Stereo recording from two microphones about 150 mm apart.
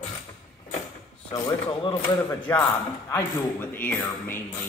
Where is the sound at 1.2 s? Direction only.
25° left (ahead or behind).